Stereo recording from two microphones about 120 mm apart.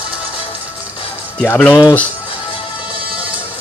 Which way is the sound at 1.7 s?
35° left (ahead or behind).